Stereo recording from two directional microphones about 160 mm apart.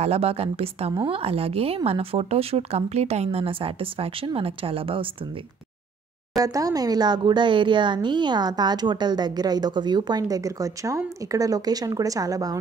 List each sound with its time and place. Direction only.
0.0 s speech: 40° right (ahead or behind)
6.3 s speech: 20° right (ahead or behind)